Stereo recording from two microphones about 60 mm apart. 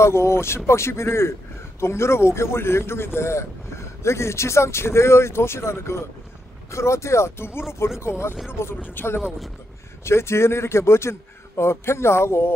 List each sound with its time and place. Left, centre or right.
0.0 s a man's voice: left